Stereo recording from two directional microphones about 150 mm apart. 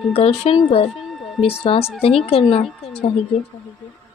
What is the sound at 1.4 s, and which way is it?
Speech, 5° right (ahead or behind).